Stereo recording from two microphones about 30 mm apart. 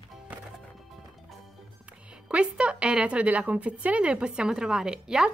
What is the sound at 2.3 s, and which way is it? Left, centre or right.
A woman's voice, right.